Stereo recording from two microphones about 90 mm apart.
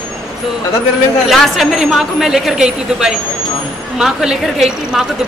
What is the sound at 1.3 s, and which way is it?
Speech, centre (ahead or behind).